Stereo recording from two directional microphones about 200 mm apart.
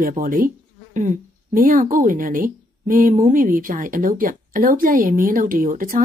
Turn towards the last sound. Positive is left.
turn(degrees=-45)  # may be behind; listen again after turning